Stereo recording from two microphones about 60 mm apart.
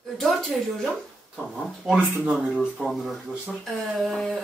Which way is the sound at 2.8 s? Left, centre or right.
Centre.